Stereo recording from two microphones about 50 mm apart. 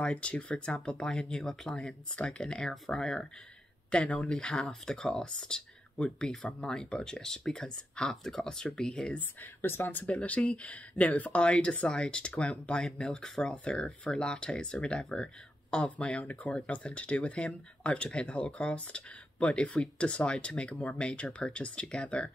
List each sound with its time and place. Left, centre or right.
0.0 s speech: left
9.1 s speech: left
10.2 s speech: left